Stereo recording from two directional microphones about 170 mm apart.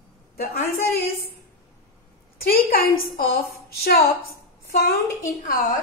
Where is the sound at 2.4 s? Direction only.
60° left (ahead or behind).